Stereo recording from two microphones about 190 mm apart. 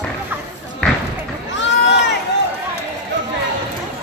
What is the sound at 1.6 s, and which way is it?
Crowd, 65° left (ahead or behind).